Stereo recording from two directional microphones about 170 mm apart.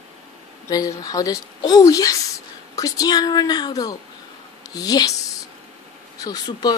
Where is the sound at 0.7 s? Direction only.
20° left (ahead or behind).